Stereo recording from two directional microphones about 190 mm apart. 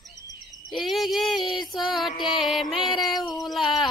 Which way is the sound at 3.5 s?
Centre (ahead or behind).